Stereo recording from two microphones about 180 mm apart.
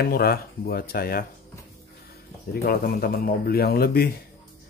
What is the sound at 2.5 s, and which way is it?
Speech, 55° left (ahead or behind).